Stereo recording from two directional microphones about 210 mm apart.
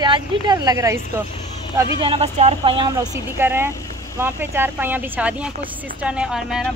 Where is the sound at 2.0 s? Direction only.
25° right (ahead or behind).